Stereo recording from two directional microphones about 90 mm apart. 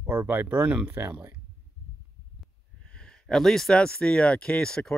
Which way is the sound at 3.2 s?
5° left (ahead or behind).